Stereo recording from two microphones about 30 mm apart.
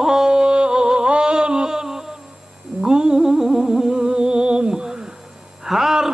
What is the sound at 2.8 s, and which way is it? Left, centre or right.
Mantra, right.